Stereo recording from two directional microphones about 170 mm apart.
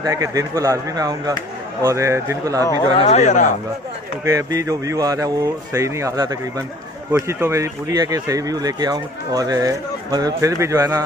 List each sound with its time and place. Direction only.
0.0 s speech: 20° right (ahead or behind)
2.8 s speech: 35° left (ahead or behind)
4.2 s speech: 20° right (ahead or behind)